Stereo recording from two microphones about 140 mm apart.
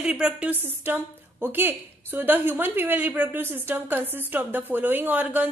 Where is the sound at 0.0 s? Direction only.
5° right (ahead or behind).